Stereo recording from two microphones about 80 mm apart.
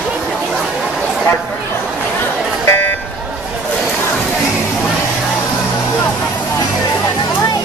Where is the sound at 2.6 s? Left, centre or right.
Left.